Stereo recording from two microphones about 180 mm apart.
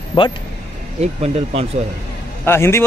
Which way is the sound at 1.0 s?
35° right (ahead or behind).